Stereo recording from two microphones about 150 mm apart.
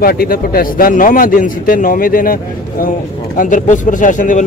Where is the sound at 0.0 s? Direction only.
90° left; by 2.3 s 70° left (ahead or behind).